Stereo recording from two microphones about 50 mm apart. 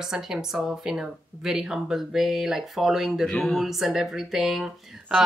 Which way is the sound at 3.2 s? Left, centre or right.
Centre.